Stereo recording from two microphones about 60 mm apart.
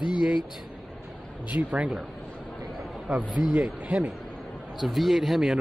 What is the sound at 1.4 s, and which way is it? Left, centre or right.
Speech, right.